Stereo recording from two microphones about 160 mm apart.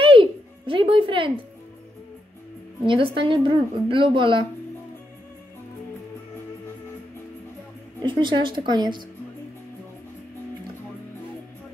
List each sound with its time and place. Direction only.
0.0 s music: 35° right (ahead or behind)
2.8 s a woman's voice: 30° right (ahead or behind)
8.2 s a woman's voice: 30° right (ahead or behind)